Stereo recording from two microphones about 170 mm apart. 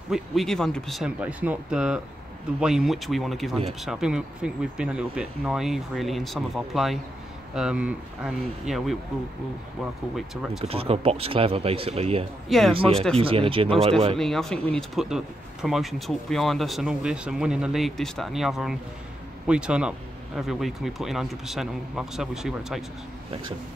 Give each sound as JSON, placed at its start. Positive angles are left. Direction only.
{"t": 0.1, "sound": "speech", "side_deg": 0}
{"t": 10.1, "sound": "speech", "side_deg": 0}
{"t": 10.6, "sound": "speech", "side_deg": -35}
{"t": 12.4, "sound": "speech", "side_deg": 0}
{"t": 12.7, "sound": "speech", "side_deg": -30}
{"t": 14.1, "sound": "speech", "side_deg": 5}